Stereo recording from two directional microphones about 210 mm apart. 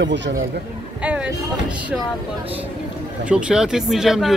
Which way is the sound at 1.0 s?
5° right (ahead or behind).